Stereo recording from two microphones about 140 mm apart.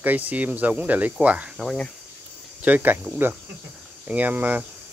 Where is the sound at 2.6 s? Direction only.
10° right (ahead or behind).